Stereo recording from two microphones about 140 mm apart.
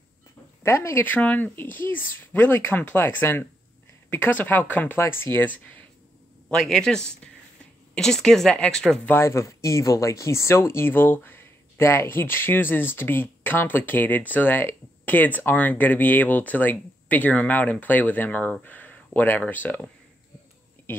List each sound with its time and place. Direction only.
0.7 s speech: 20° left (ahead or behind)